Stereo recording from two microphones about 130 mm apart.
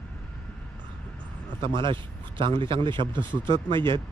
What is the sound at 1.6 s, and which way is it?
Speech, 40° right (ahead or behind).